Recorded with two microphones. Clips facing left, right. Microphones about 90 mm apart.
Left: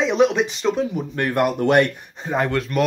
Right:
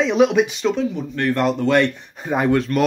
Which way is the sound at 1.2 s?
15° left (ahead or behind).